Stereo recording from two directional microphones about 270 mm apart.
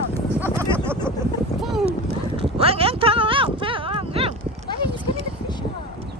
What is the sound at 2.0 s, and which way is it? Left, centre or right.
Clip-clop, right.